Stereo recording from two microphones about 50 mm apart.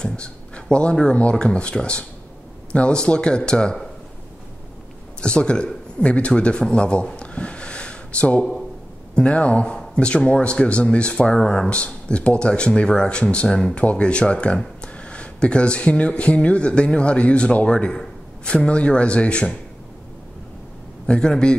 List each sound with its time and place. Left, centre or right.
0.0 s speech: left
5.2 s speech: centre
6.7 s gasp: centre
9.1 s speech: left
21.1 s a man's voice: centre